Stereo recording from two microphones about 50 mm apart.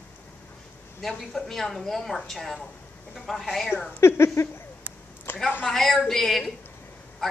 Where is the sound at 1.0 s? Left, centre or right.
Centre.